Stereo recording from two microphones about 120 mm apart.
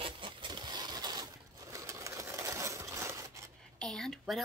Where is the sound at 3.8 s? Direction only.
5° left (ahead or behind).